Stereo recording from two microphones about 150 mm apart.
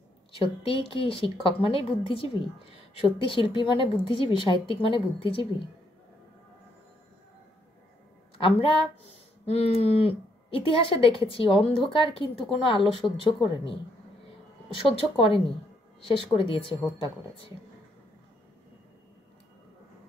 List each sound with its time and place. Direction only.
0.4 s speech: 35° left (ahead or behind)
8.5 s speech: 40° left (ahead or behind)
14.9 s speech: 40° left (ahead or behind)